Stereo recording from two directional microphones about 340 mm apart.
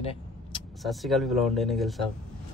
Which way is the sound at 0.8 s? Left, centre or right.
Centre.